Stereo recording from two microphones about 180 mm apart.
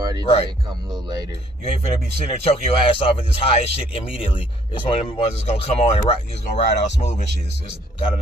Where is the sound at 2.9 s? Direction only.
30° left (ahead or behind).